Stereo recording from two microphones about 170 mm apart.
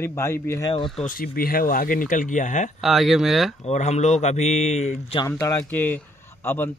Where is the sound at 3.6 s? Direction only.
40° left (ahead or behind).